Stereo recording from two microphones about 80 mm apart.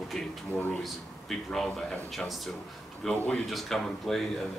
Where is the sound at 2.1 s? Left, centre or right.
Centre.